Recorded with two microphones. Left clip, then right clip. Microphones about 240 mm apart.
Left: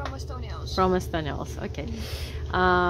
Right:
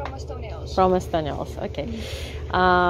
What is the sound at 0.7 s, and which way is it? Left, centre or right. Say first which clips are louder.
A woman's voice: right 5 dB; centre.